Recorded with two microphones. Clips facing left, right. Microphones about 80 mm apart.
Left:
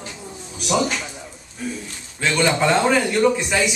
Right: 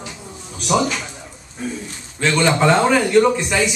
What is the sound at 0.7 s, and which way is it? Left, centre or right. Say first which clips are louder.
A man's voice: right 2 dB; centre.